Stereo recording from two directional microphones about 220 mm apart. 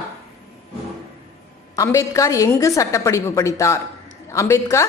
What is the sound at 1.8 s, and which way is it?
Speech, 15° left (ahead or behind).